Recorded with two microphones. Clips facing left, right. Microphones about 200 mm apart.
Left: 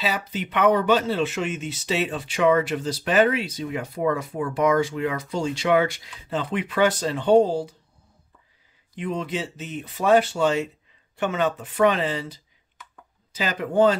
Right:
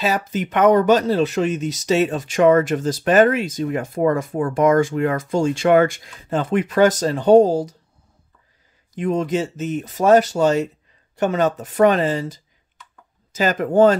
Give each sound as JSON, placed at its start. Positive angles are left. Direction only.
{"t": 0.0, "sound": "speech", "side_deg": -45}
{"t": 8.9, "sound": "speech", "side_deg": -45}